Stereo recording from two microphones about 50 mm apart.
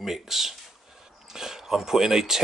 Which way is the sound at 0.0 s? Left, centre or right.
Centre.